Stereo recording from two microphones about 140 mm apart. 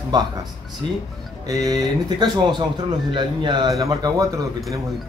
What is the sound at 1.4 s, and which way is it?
A man's voice, 25° right (ahead or behind).